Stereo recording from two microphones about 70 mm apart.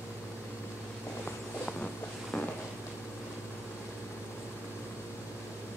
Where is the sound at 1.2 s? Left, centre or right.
Centre.